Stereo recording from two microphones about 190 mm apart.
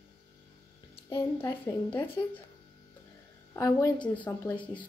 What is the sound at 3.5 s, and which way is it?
Speech, 15° left (ahead or behind).